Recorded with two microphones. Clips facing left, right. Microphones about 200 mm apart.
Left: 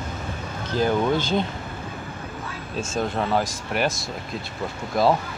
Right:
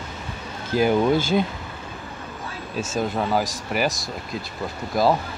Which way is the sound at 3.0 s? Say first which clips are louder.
Right 1 dB; 5° right (ahead or behind).